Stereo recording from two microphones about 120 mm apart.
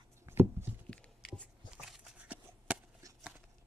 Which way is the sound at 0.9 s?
10° left (ahead or behind).